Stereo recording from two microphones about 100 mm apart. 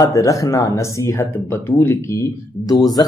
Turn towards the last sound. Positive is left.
turn(degrees=40)  # may be behind; listen again after turning